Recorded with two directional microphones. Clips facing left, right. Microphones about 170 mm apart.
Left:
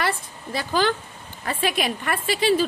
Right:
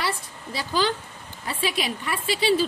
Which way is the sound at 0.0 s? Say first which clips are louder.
Left 3 dB; 55° left (ahead or behind).